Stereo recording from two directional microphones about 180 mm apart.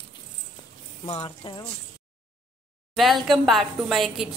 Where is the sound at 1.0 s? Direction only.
30° left (ahead or behind).